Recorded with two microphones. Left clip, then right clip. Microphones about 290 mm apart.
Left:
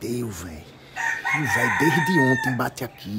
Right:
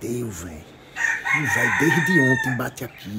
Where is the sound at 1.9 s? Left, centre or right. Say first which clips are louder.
Right 1 dB; left.